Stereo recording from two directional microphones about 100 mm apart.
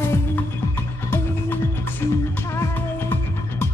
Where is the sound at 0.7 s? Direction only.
20° left (ahead or behind).